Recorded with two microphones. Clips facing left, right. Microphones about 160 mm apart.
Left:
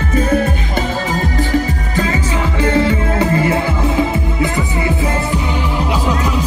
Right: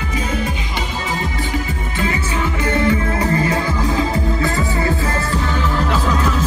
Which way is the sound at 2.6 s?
30° left (ahead or behind).